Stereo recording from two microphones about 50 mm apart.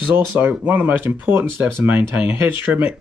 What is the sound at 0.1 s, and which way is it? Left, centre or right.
Speech, right.